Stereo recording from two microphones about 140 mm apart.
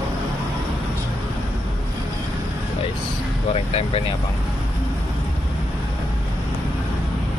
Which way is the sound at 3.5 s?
45° left (ahead or behind).